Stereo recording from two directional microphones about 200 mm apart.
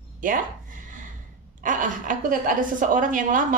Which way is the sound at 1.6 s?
40° right (ahead or behind).